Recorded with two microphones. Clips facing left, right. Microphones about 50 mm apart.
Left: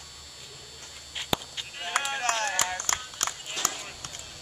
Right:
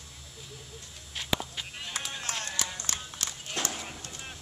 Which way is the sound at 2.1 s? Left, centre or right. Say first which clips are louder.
Left 8 dB; left.